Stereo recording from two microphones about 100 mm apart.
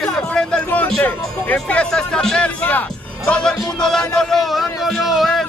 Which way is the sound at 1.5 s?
10° left (ahead or behind).